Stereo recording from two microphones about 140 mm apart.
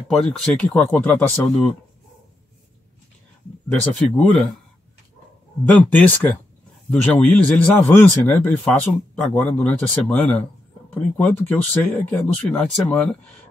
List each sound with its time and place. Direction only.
0.1 s speech: 5° left (ahead or behind)
4.2 s speech: centre (ahead or behind)
5.7 s speech: 10° left (ahead or behind)